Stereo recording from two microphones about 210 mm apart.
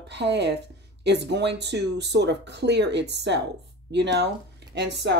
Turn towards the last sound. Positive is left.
turn(degrees=-55)  # may be behind; listen again after turning